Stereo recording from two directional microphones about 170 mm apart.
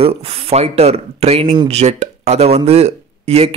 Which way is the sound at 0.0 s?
35° right (ahead or behind).